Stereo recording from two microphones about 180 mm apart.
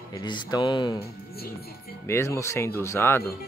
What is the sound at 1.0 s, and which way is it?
Music, 60° left (ahead or behind).